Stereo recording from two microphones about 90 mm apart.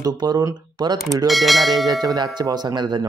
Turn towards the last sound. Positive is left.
turn(degrees=-55)  # may be behind; listen again after turning